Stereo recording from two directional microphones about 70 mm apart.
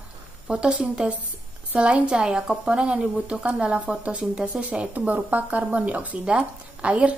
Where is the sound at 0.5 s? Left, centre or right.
Centre.